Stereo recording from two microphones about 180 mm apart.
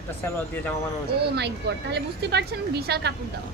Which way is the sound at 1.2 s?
70° right (ahead or behind).